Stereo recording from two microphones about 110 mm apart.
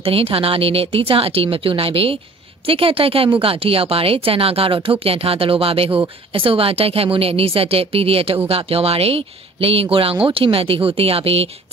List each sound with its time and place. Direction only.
0.0 s speech: 60° right (ahead or behind)